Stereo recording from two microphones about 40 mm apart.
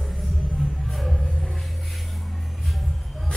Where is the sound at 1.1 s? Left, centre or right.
Left.